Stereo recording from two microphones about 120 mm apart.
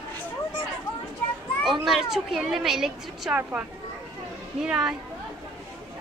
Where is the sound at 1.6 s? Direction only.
Centre (ahead or behind).